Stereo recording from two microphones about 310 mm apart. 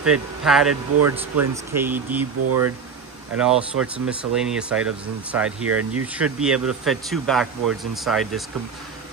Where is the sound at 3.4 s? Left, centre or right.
Centre.